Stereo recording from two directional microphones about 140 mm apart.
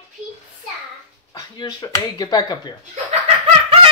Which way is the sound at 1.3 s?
25° left (ahead or behind).